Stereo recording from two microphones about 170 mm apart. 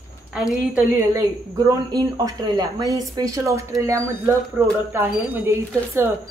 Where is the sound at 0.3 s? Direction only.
5° right (ahead or behind).